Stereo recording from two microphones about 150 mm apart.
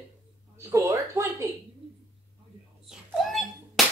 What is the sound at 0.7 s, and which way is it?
Speech, 20° right (ahead or behind).